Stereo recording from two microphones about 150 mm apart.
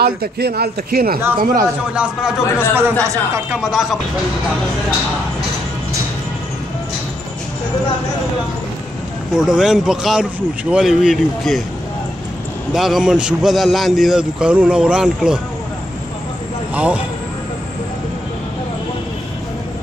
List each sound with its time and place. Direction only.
0.0 s a man's voice: 90° right
1.4 s speech: 70° right (ahead or behind)
2.0 s a man's voice: 5° right (ahead or behind)
2.7 s speech: 15° right (ahead or behind)
3.4 s a man's voice: centre (ahead or behind)
9.3 s a man's voice: 5° right (ahead or behind)
12.7 s a man's voice: centre (ahead or behind)
16.7 s speech: 10° right (ahead or behind)